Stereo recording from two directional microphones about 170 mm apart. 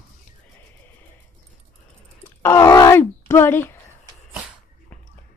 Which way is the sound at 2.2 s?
15° left (ahead or behind).